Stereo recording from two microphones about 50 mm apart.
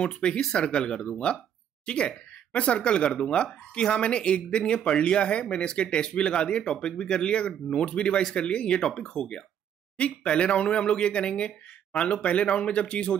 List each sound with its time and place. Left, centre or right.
0.0 s speech: centre